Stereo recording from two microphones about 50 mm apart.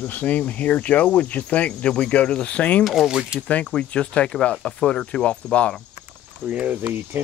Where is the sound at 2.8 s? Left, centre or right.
Centre.